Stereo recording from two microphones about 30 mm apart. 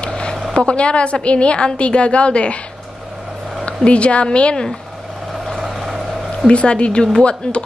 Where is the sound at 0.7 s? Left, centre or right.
Left.